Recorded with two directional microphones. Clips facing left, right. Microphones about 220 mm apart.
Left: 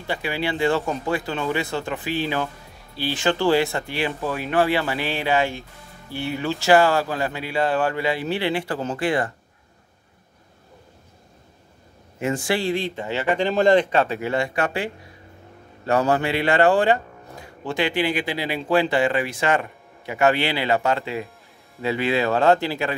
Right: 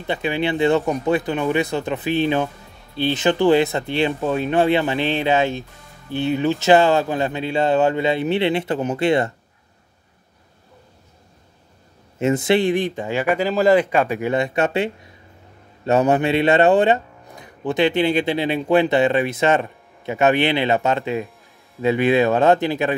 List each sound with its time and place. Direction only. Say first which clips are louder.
0.0 s speech: right 4 dB; 20° right (ahead or behind)
12.2 s speech: right 6 dB; 20° right (ahead or behind)